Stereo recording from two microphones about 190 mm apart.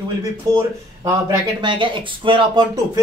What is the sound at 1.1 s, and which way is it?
Speech, 20° right (ahead or behind).